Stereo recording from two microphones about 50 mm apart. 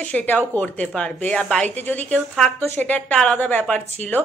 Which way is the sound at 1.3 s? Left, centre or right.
Centre.